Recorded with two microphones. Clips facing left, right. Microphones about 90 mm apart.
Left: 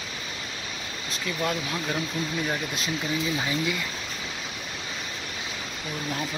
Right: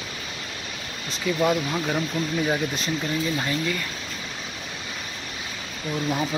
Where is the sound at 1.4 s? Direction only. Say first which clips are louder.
Right 4 dB; 5° right (ahead or behind).